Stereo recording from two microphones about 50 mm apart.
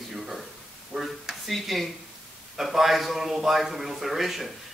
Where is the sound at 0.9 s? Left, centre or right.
Centre.